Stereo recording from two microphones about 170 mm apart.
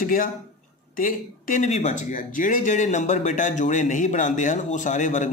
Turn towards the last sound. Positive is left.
turn(degrees=45)  # may be behind; listen again after turning